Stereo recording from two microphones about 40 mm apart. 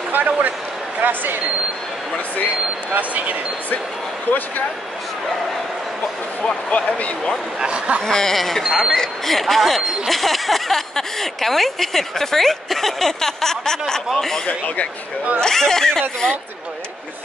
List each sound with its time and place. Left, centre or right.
0.1 s speech: right
2.9 s speech: right
6.7 s speech: left
7.6 s speech: right
8.0 s speech: centre
8.4 s speech: centre
8.9 s speech: centre